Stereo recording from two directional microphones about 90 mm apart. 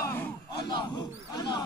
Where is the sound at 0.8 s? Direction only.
50° left (ahead or behind).